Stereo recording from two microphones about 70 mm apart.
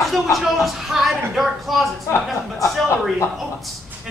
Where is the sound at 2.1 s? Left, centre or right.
Left.